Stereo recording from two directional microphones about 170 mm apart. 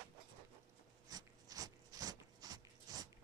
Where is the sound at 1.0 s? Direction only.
20° right (ahead or behind).